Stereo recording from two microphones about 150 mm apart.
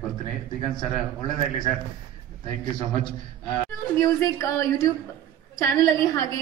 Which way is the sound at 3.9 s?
20° left (ahead or behind).